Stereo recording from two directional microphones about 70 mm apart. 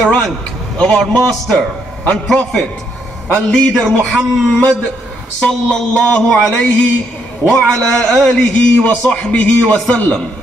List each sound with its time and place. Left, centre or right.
0.0 s a man's voice: centre
3.3 s a man's voice: centre